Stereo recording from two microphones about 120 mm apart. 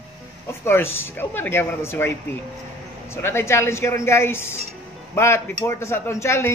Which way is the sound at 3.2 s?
20° left (ahead or behind).